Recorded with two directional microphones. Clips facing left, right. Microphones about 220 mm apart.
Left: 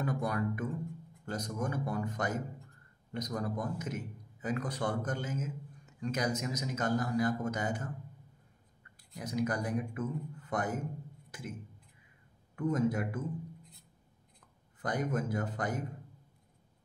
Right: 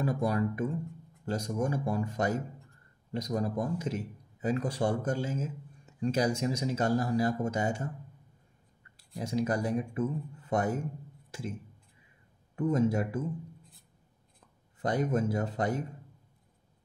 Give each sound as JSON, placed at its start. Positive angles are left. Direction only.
{"t": 0.0, "sound": "a man's voice", "side_deg": -30}
{"t": 8.9, "sound": "a man's voice", "side_deg": -25}
{"t": 12.5, "sound": "a man's voice", "side_deg": -25}
{"t": 14.8, "sound": "a man's voice", "side_deg": -25}